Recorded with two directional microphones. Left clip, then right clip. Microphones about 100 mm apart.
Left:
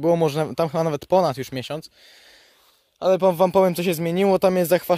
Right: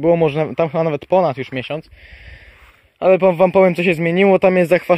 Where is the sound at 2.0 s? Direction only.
15° left (ahead or behind).